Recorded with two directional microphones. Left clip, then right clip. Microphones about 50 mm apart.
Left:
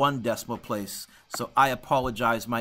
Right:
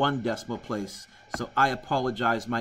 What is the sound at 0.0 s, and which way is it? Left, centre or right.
Speech, left.